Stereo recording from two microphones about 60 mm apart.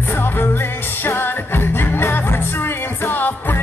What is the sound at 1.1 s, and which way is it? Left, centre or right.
Music, left.